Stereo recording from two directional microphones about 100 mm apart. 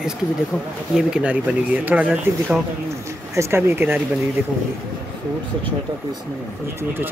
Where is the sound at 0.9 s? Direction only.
10° right (ahead or behind).